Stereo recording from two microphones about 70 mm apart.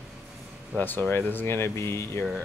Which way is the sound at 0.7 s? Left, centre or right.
Left.